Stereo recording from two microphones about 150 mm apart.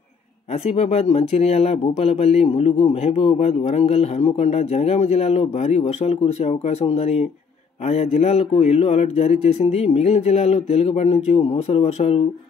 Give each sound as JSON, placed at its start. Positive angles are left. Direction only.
{"t": 0.7, "sound": "a man's voice", "side_deg": 45}